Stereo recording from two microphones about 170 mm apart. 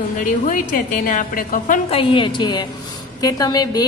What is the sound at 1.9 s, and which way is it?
A woman's voice, 30° left (ahead or behind).